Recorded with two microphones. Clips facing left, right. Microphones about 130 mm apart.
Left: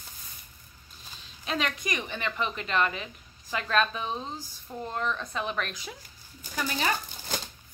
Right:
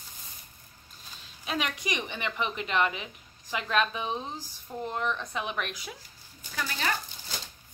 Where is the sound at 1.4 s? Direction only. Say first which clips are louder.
Left 1 dB; 10° right (ahead or behind).